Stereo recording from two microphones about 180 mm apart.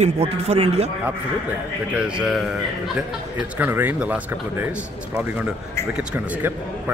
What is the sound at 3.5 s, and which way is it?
A man's voice, 10° right (ahead or behind).